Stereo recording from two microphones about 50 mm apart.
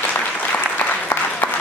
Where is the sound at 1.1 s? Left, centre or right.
Left.